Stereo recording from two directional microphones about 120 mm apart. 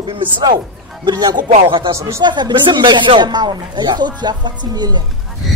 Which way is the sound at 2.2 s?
40° right (ahead or behind).